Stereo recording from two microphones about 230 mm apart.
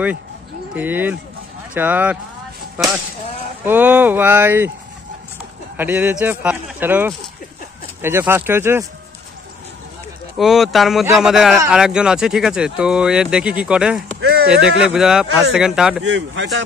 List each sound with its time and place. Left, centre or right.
0.7 s speech: centre
5.8 s speech: centre
10.3 s speech: centre
14.2 s a sound: right
14.5 s speech: centre
16.0 s speech: right